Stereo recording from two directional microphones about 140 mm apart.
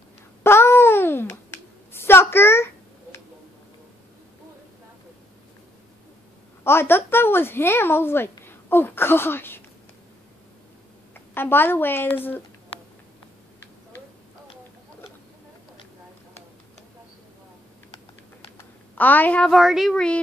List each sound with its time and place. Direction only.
0.4 s a sound: 20° left (ahead or behind)
6.6 s a woman's voice: 15° left (ahead or behind)
11.1 s a woman's voice: 15° left (ahead or behind)
18.9 s a woman's voice: 10° left (ahead or behind)